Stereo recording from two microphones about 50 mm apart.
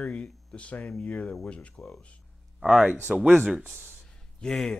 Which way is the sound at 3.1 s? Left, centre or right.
Centre.